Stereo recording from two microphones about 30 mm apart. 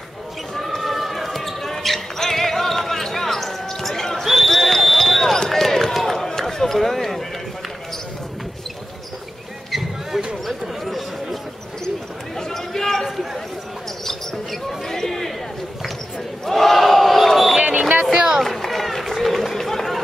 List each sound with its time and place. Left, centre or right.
0.6 s basketball bounce: centre
5.5 s a sound: centre
5.9 s run: centre
9.7 s a sound: centre
10.9 s chatter: centre
12.4 s a sound: centre
14.0 s basketball bounce: centre
14.9 s chatter: centre
16.4 s battle cry: centre
18.1 s run: right
18.7 s run: centre